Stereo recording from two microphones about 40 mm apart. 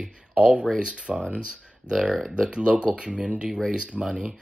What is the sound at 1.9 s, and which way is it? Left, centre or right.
Speech, centre.